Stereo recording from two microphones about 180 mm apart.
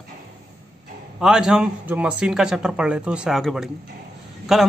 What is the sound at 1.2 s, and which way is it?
A man's voice, 5° right (ahead or behind).